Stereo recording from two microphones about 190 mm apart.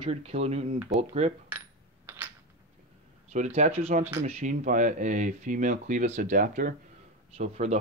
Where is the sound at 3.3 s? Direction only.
40° right (ahead or behind).